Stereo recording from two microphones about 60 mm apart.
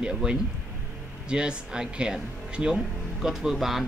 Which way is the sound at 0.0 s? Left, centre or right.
Centre.